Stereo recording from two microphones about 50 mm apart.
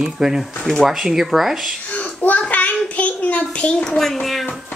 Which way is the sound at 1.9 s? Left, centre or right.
Left.